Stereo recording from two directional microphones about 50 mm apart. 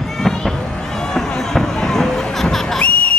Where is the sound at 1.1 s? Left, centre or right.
Centre.